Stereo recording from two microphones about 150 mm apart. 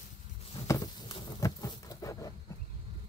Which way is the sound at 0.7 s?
30° left (ahead or behind).